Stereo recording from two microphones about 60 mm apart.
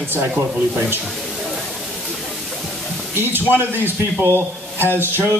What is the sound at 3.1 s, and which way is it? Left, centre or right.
A man's voice, right.